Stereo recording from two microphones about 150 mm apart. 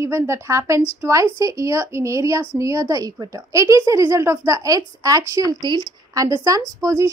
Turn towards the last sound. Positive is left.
turn(degrees=-20)  # may be behind; listen again after turning